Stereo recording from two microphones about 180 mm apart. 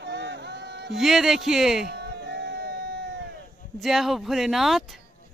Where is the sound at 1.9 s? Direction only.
70° right (ahead or behind).